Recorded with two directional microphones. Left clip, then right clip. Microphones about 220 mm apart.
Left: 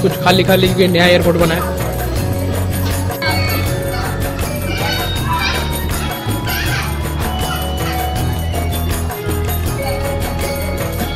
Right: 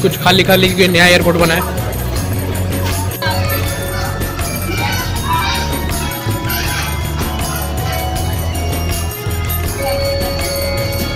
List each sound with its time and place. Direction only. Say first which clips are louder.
0.2 s a man's voice: right 2 dB; 5° right (ahead or behind)